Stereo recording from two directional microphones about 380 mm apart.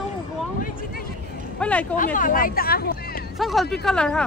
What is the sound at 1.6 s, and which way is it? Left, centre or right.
Speech, centre.